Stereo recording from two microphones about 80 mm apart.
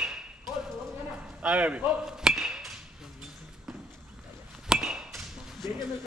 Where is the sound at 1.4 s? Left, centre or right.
Centre.